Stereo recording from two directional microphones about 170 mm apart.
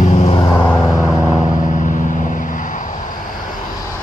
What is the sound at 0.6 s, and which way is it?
Vehicle, centre (ahead or behind).